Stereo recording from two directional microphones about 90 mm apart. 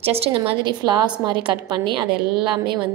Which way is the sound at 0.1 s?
90° right.